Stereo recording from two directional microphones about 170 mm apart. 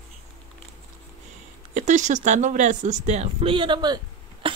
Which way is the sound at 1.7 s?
45° right (ahead or behind).